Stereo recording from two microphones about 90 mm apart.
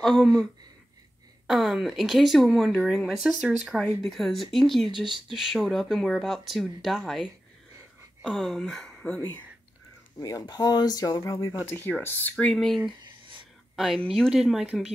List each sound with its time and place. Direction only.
0.0 s speech: 5° left (ahead or behind)
1.5 s speech: 5° right (ahead or behind)
3.7 s speech: centre (ahead or behind)
10.2 s speech: 40° left (ahead or behind)
11.7 s speech: 25° left (ahead or behind)
12.4 s speech: centre (ahead or behind)
13.0 s a sound: 65° right (ahead or behind)
13.7 s speech: 5° right (ahead or behind)